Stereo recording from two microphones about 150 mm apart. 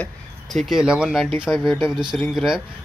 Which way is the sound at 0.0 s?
Centre (ahead or behind).